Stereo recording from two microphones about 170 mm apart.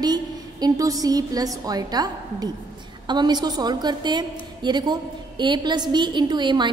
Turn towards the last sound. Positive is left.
turn(degrees=-25)  # may be behind; listen again after turning